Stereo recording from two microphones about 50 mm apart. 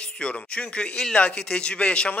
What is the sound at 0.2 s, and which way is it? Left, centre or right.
A man's voice, left.